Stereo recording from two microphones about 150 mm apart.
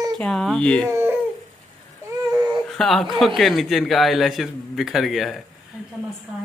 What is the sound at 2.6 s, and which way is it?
Speech, centre (ahead or behind).